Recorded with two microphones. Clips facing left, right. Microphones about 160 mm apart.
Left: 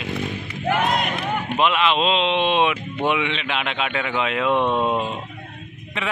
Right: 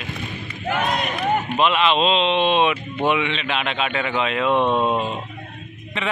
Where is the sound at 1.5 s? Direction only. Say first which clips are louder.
Left 1 dB; 10° left (ahead or behind).